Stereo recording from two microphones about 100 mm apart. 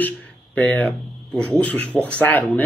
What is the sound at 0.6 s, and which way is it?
Speech, 10° left (ahead or behind).